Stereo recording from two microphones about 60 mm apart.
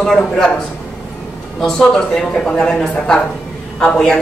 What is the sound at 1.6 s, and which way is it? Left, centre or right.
Speech, centre.